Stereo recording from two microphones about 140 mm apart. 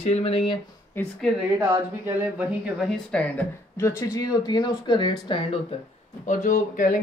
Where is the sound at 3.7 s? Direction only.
20° left (ahead or behind).